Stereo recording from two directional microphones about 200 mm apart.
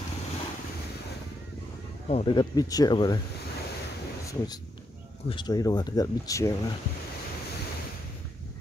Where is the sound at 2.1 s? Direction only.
25° left (ahead or behind).